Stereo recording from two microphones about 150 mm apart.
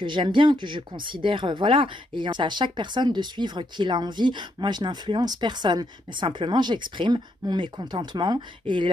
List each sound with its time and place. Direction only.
0.0 s speech: 30° right (ahead or behind)